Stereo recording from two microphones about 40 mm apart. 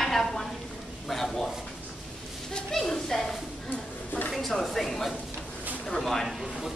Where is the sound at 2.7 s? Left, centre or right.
Centre.